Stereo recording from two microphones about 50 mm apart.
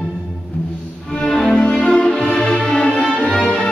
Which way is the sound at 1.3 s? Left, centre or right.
Centre.